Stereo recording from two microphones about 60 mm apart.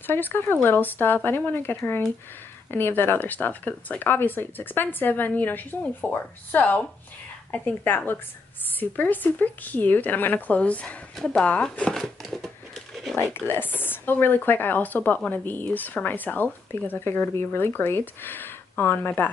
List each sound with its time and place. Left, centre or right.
0.0 s a woman's voice: left
11.9 s speech: centre
13.5 s a woman's voice: left
15.1 s speech: centre
15.4 s a woman's voice: left